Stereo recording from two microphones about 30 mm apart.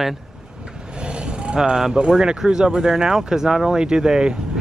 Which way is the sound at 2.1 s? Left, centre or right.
Right.